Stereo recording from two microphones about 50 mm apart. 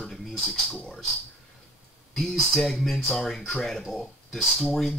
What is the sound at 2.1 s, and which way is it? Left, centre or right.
Speech, centre.